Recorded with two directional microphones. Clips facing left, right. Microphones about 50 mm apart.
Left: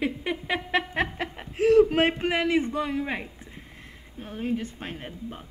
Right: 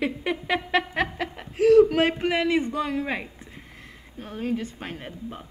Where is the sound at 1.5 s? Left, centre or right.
Left.